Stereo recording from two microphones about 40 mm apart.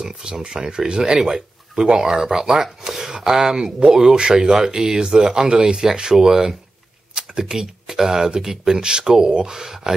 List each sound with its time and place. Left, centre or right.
0.0 s speech: centre